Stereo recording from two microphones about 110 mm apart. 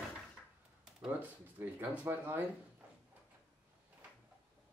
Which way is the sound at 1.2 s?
15° right (ahead or behind).